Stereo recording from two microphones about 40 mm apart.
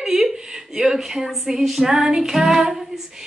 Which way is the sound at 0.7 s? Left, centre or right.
Centre.